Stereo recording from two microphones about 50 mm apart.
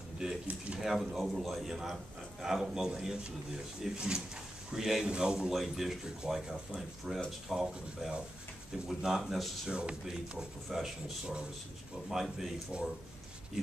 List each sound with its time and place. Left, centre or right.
0.2 s speech: centre
9.7 s speech: centre
10.0 s speech: centre
12.7 s speech: right